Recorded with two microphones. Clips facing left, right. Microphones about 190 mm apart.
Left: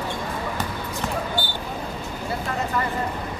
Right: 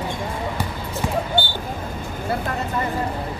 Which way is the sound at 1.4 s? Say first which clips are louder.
Right 4 dB; 25° right (ahead or behind).